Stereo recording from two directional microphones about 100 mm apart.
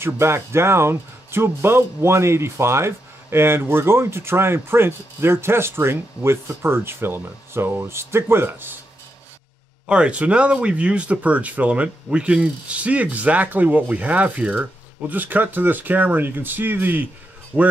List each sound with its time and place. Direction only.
0.0 s speech: 25° right (ahead or behind)
9.8 s speech: 10° right (ahead or behind)